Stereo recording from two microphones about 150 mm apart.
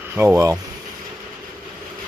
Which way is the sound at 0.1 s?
15° right (ahead or behind).